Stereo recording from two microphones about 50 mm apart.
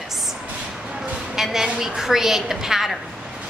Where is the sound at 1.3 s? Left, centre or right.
Centre.